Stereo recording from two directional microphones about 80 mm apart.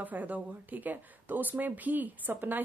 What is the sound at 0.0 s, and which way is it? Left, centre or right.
A woman's voice, right.